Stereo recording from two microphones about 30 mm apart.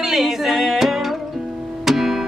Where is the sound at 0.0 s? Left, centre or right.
Centre.